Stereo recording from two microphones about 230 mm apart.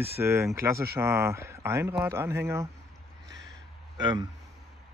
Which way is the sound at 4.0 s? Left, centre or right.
Centre.